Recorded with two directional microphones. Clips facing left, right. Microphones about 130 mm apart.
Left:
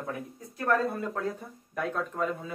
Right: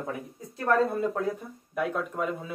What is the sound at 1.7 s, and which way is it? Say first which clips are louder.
Speech: right 2 dB; 10° right (ahead or behind).